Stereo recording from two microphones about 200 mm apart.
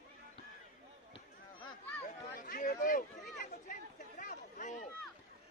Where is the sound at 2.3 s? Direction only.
40° left (ahead or behind).